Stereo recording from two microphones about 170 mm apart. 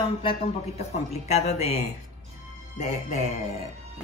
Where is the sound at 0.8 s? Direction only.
40° left (ahead or behind).